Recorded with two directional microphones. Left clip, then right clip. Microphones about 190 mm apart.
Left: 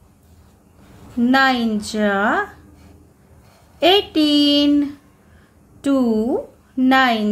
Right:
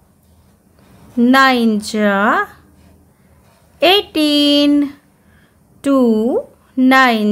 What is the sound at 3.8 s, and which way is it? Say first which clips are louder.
A woman's voice: right 3 dB; 35° right (ahead or behind).